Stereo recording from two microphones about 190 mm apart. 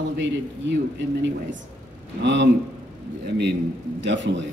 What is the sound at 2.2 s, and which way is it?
Speech, 70° right (ahead or behind).